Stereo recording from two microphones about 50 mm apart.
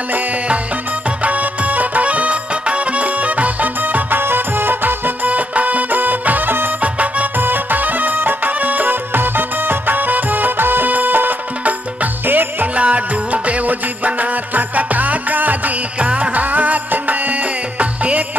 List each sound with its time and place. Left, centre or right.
1.2 s music: right
6.8 s music: right
7.3 s music: right
12.7 s music: right